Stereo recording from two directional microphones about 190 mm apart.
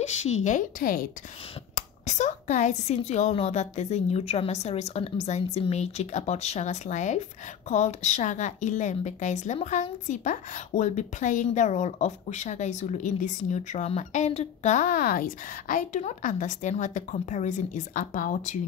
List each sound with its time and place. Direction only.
0.0 s a woman's voice: 35° left (ahead or behind)